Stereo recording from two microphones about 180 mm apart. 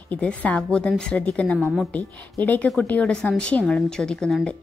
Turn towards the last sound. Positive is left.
turn(degrees=0)  # may be behind; listen again after turning